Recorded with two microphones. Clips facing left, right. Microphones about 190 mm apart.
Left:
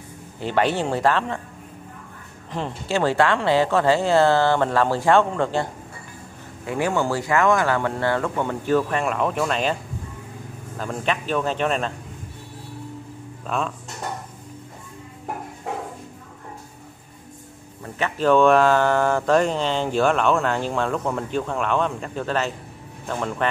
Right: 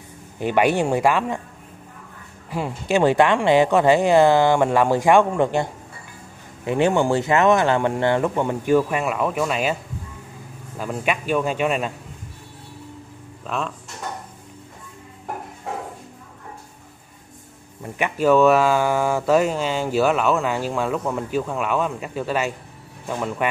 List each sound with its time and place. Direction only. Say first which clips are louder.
0.4 s speech: right 3 dB; 15° right (ahead or behind)
2.5 s speech: right 3 dB; 10° right (ahead or behind)
10.8 s speech: right 1 dB; 10° right (ahead or behind)
13.5 s speech: left 1 dB; centre (ahead or behind)
17.8 s speech: right 2 dB; 15° right (ahead or behind)